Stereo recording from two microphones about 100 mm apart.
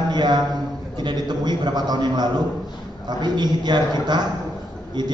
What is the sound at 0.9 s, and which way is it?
A man's voice, 45° right (ahead or behind).